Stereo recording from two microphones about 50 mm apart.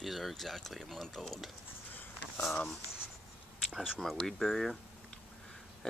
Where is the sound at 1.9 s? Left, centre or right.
Left.